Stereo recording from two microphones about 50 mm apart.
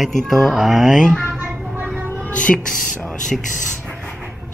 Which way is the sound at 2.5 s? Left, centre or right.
Centre.